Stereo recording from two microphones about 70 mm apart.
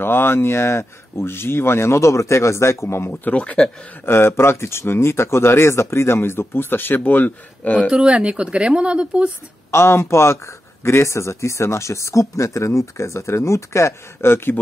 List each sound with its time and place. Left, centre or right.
0.0 s speech: left
3.3 s speech: centre
4.0 s speech: left
7.9 s speech: centre
9.7 s speech: left